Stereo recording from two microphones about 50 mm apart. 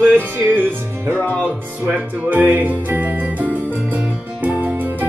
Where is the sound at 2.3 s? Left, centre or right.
Right.